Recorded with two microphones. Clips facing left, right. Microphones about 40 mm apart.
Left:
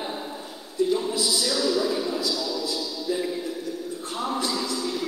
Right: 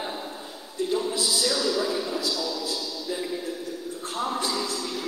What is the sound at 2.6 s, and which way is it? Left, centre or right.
Music, left.